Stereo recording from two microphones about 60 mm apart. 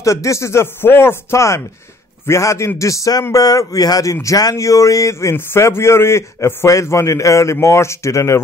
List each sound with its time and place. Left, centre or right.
0.0 s a man's voice: left
5.3 s a man's voice: left
7.6 s a man's voice: left